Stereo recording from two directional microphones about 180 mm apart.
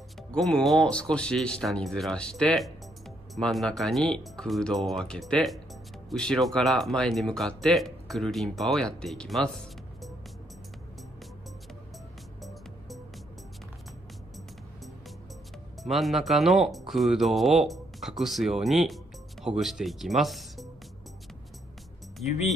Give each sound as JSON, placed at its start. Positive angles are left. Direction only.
{"t": 0.3, "sound": "speech", "side_deg": 5}
{"t": 12.4, "sound": "music", "side_deg": 0}
{"t": 15.8, "sound": "speech", "side_deg": 0}
{"t": 22.2, "sound": "speech", "side_deg": 40}